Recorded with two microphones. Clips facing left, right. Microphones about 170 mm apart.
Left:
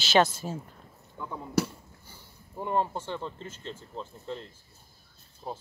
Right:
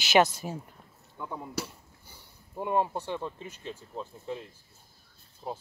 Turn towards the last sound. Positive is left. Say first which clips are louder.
# right 1 dB
turn(degrees=-5)  # may be behind; listen again after turning